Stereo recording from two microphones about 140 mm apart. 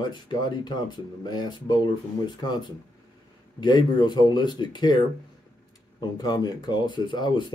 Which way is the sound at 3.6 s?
30° left (ahead or behind).